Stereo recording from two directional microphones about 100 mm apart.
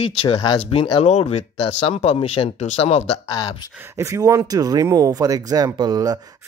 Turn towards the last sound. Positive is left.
turn(degrees=-40)  # may be behind; listen again after turning